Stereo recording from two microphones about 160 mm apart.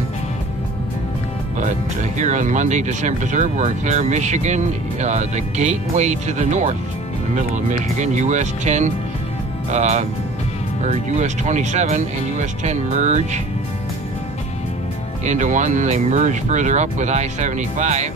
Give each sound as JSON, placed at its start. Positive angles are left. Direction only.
{"t": 2.1, "sound": "speech", "side_deg": -50}
{"t": 15.2, "sound": "speech", "side_deg": -50}